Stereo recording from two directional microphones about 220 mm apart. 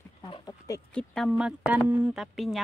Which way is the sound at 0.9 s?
5° left (ahead or behind).